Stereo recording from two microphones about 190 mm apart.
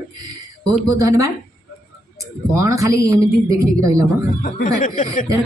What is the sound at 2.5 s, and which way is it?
Speech, 15° right (ahead or behind).